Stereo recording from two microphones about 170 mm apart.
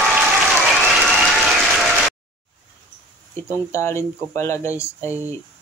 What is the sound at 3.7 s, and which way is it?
Speech, 15° left (ahead or behind).